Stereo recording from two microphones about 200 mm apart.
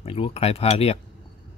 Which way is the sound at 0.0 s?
30° left (ahead or behind).